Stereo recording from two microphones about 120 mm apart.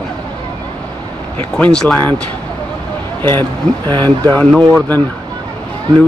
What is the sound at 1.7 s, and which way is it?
Speech, 5° left (ahead or behind).